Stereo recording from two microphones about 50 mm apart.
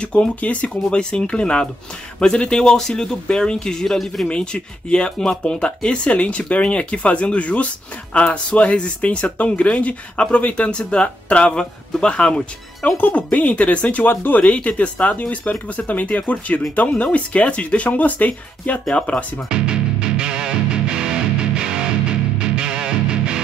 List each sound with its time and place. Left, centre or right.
0.0 s speech: centre
4.3 s speech: centre
12.9 s speech: left
19.5 s music: centre